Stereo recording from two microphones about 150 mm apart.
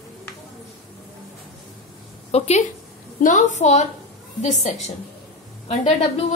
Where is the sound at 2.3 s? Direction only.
45° left (ahead or behind).